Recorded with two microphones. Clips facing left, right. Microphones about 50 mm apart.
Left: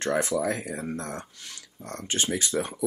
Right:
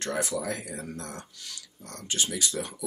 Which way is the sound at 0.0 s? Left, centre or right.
Left.